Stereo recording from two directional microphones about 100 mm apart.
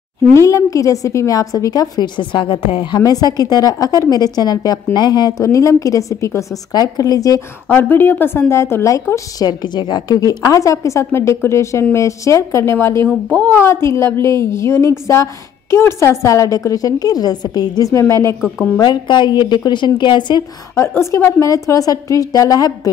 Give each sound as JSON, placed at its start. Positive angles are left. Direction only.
{"t": 0.5, "sound": "a woman's voice", "side_deg": 30}
{"t": 7.6, "sound": "a woman's voice", "side_deg": 20}
{"t": 9.1, "sound": "a woman's voice", "side_deg": 40}
{"t": 18.8, "sound": "a woman's voice", "side_deg": 50}
{"t": 20.7, "sound": "a woman's voice", "side_deg": 30}